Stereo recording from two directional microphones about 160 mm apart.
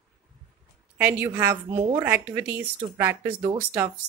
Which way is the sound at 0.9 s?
10° right (ahead or behind).